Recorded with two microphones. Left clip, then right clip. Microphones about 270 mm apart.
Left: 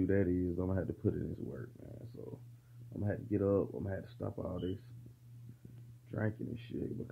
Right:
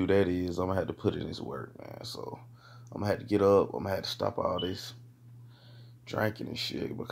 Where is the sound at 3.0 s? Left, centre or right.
Centre.